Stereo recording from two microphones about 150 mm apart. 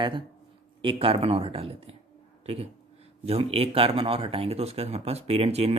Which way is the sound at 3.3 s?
40° right (ahead or behind).